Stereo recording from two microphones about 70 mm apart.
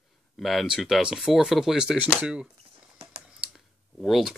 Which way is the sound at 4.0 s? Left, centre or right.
Centre.